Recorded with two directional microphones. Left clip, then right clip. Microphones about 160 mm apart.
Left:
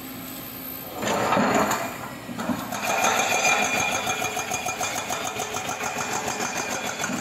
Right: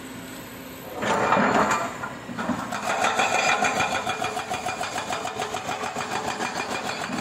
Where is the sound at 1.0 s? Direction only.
10° left (ahead or behind).